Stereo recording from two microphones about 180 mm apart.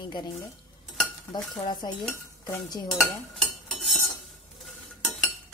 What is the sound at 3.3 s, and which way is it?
Cutlery, centre (ahead or behind).